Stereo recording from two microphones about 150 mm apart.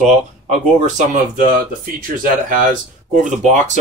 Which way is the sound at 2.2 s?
60° right (ahead or behind).